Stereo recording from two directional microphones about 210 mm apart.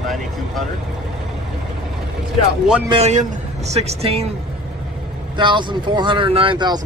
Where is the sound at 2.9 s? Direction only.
35° right (ahead or behind).